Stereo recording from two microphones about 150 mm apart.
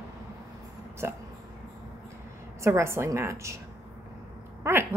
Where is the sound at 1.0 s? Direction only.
15° right (ahead or behind).